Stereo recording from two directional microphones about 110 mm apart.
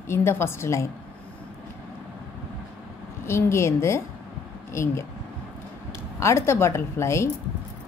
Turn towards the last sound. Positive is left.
turn(degrees=25)  # may be behind; listen again after turning